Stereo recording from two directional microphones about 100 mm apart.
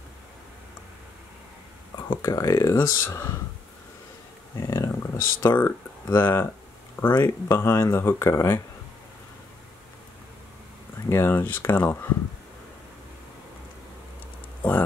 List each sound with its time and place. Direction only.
2.0 s speech: 30° left (ahead or behind)
4.6 s speech: 30° left (ahead or behind)
11.1 s speech: 25° left (ahead or behind)